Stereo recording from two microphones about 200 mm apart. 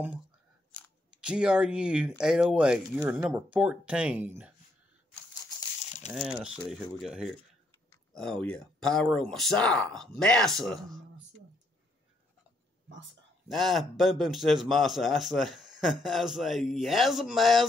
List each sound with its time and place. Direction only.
1.2 s a man's voice: 5° right (ahead or behind)
6.1 s a man's voice: 5° right (ahead or behind)
13.5 s a man's voice: centre (ahead or behind)